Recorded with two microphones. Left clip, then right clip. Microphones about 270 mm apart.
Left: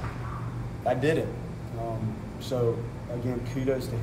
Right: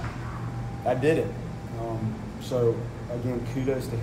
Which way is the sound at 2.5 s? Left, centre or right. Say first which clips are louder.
Right 3 dB; centre.